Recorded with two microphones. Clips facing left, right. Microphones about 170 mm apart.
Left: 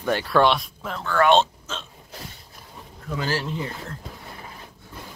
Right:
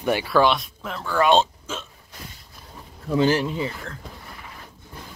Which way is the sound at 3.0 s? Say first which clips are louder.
Right 8 dB; 25° right (ahead or behind).